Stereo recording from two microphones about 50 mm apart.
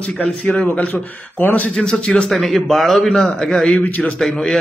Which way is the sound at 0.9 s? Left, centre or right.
Left.